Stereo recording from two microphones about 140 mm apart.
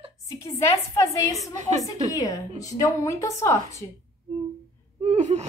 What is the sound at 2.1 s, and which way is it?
A woman's voice, 25° left (ahead or behind).